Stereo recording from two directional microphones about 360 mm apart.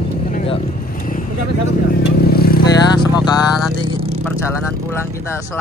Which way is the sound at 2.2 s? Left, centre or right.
Left.